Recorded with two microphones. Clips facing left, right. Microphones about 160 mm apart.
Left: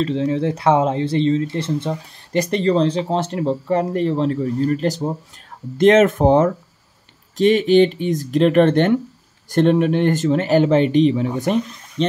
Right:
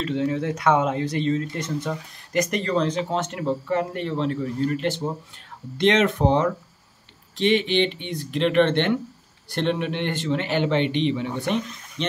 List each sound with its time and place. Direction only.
0.0 s speech: 30° left (ahead or behind)